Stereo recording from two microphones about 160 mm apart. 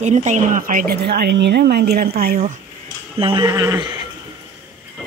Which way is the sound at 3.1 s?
35° right (ahead or behind).